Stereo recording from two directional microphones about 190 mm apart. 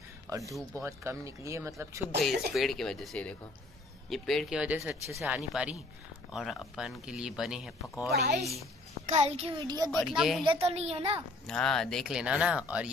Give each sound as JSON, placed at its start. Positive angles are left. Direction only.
{"t": 0.3, "sound": "speech", "side_deg": -15}
{"t": 2.2, "sound": "speech", "side_deg": 0}
{"t": 9.0, "sound": "a child's voice", "side_deg": -35}
{"t": 9.8, "sound": "speech", "side_deg": 0}
{"t": 10.4, "sound": "a child's voice", "side_deg": -30}
{"t": 11.4, "sound": "speech", "side_deg": 5}